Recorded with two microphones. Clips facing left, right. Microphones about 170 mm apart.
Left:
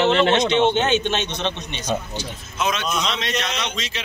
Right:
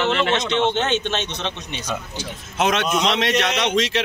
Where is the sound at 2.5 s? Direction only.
75° right (ahead or behind).